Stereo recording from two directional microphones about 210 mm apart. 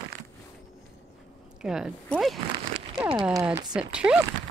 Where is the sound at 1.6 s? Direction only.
5° right (ahead or behind).